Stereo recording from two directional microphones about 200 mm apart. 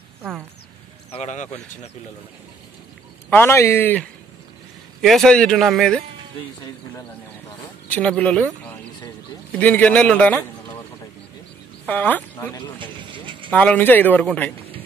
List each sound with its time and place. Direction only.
1.1 s speech: 35° left (ahead or behind)
3.3 s a man's voice: 10° left (ahead or behind)
5.0 s speech: centre (ahead or behind)
7.9 s speech: 5° left (ahead or behind)
9.6 s a man's voice: 5° left (ahead or behind)
11.8 s speech: 10° left (ahead or behind)
12.7 s vehicle: 25° right (ahead or behind)
13.5 s a man's voice: 5° left (ahead or behind)